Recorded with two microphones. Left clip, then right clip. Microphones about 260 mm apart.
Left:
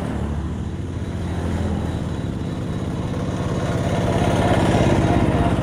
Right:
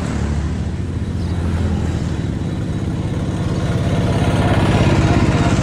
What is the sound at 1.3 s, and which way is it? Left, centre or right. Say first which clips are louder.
Vehicle: right 1 dB; left.